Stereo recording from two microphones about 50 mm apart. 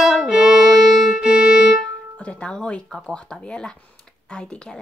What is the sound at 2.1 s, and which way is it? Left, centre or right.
Speech, left.